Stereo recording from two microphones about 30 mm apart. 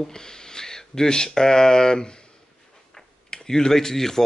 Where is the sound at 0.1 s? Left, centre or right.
Left.